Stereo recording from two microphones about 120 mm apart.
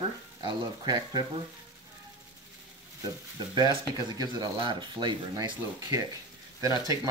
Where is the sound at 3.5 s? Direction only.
35° right (ahead or behind).